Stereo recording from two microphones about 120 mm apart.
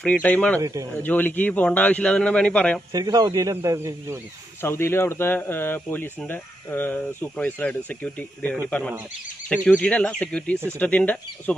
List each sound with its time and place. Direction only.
0.0 s speech: 10° left (ahead or behind)
0.6 s speech: 30° right (ahead or behind)
1.0 s speech: 15° left (ahead or behind)
2.9 s speech: 30° right (ahead or behind)
4.6 s speech: 20° left (ahead or behind)